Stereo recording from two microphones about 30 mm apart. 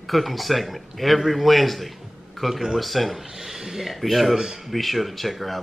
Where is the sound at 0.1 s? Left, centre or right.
Centre.